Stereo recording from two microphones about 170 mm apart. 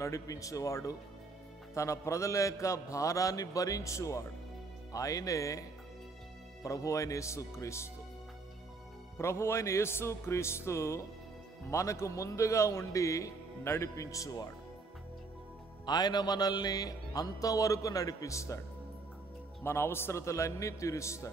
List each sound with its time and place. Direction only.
0.0 s music: 20° left (ahead or behind)
6.6 s a man's voice: 20° left (ahead or behind)
9.2 s a man's voice: 15° left (ahead or behind)
15.8 s music: 25° left (ahead or behind)
19.6 s a man's voice: 15° left (ahead or behind)